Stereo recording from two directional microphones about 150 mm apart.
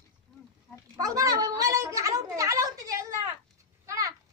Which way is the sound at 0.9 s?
25° right (ahead or behind).